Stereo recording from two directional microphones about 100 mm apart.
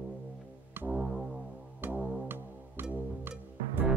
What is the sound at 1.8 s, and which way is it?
Music, 20° right (ahead or behind).